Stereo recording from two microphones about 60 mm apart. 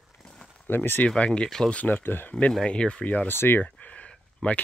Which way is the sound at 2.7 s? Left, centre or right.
Centre.